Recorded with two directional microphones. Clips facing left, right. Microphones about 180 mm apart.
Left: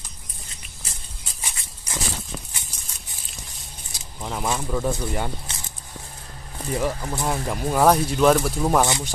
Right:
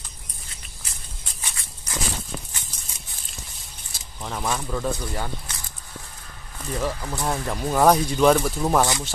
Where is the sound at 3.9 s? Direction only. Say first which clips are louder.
Left 2 dB; 10° left (ahead or behind).